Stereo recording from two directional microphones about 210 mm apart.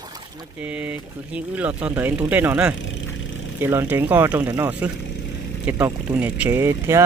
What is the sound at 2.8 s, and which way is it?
Vehicle, 65° left (ahead or behind).